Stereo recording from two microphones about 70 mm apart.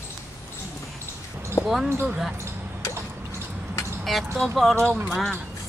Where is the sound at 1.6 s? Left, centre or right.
Left.